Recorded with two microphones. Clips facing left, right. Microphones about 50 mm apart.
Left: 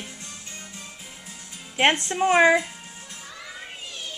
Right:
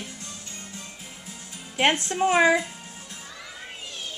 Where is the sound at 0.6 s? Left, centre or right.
Centre.